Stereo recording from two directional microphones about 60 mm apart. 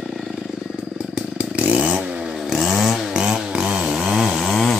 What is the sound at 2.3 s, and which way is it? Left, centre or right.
Chainsaw, centre.